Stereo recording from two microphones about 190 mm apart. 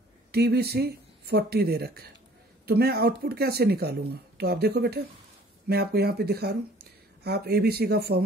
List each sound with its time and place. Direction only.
0.3 s speech: 60° right (ahead or behind)